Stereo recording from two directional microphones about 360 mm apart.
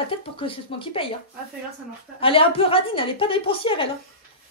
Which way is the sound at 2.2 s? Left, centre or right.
Centre.